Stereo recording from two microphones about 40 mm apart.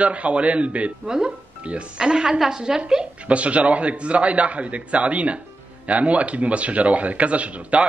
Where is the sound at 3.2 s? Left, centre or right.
Right.